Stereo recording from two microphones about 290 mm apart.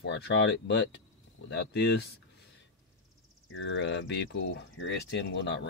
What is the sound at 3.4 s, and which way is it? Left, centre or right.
Speech, left.